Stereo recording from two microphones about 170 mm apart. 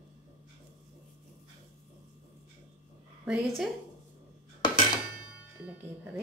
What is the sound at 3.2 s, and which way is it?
Speech, 5° right (ahead or behind).